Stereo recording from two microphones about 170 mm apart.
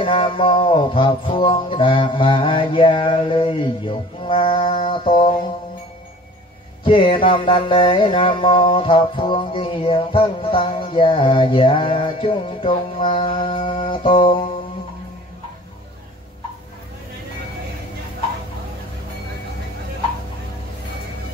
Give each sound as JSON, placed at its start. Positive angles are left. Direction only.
{"t": 0.0, "sound": "music", "side_deg": 30}
{"t": 6.8, "sound": "music", "side_deg": 30}